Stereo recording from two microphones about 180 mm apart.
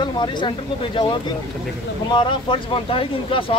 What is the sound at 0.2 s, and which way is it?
Speech, 25° left (ahead or behind).